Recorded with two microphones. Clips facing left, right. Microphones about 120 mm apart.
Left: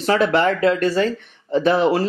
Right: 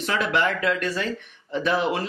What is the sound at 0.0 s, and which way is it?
Speech, 35° left (ahead or behind).